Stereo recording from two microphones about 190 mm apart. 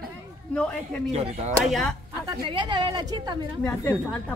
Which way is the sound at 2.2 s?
25° right (ahead or behind).